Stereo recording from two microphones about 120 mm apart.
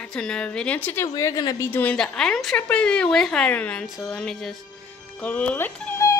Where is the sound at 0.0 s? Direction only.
5° left (ahead or behind).